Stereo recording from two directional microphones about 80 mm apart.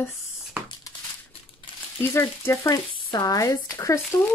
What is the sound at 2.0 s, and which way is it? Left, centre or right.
Speech, left.